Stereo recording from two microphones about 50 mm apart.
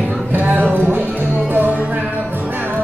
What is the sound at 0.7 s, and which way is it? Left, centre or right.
Music, right.